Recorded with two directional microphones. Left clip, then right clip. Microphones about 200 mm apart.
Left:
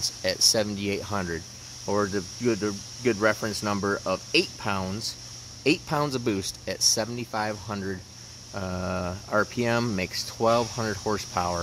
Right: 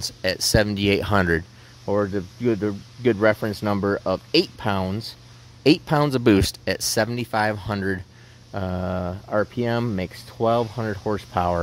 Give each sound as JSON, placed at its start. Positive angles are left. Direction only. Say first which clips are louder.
{"t": 0.2, "sound": "speech", "louder": "right 3 dB", "side_deg": -35}
{"t": 1.9, "sound": "speech", "louder": "right 3 dB", "side_deg": -35}